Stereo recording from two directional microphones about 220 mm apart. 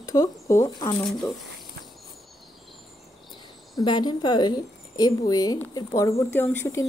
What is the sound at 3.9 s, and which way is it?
Speech, 20° left (ahead or behind).